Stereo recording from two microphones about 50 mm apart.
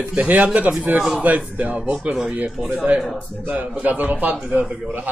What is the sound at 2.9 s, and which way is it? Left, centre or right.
Speech, right.